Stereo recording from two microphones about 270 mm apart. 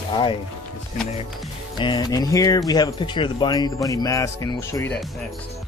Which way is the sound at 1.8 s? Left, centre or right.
Centre.